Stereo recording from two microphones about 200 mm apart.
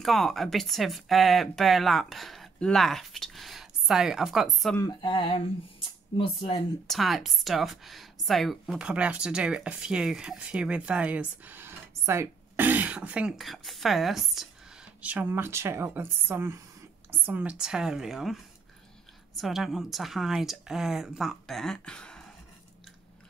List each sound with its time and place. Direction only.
0.0 s a woman's voice: centre (ahead or behind)
4.7 s speech: 20° left (ahead or behind)
6.9 s a woman's voice: centre (ahead or behind)